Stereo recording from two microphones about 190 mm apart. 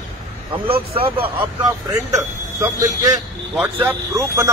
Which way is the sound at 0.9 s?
30° right (ahead or behind).